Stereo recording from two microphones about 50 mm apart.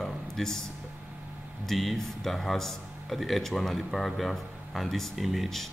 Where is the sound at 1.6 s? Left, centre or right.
Centre.